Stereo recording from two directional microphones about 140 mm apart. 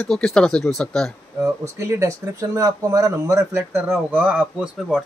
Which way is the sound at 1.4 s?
20° right (ahead or behind).